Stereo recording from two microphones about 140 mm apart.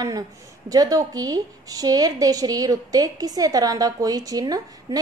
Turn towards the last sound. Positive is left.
turn(degrees=-25)  # may be behind; listen again after turning